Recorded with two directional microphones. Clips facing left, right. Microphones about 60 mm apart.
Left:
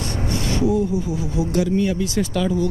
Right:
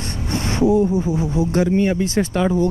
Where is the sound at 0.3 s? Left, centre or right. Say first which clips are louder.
Right 4 dB; right.